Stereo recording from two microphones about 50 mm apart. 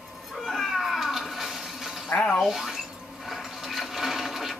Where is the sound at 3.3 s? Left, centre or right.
Centre.